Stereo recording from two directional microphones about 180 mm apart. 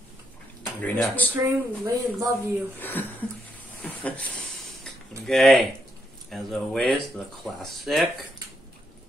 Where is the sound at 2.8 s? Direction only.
10° left (ahead or behind).